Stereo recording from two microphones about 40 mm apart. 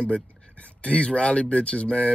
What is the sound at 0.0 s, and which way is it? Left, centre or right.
Speech, left.